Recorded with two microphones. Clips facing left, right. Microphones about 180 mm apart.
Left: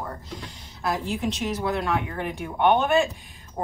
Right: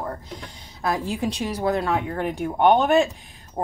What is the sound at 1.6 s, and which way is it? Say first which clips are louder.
Speech: right 5 dB; 40° right (ahead or behind).